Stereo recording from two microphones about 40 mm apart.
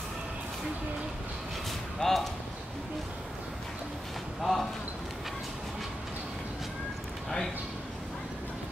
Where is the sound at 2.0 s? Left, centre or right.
Left.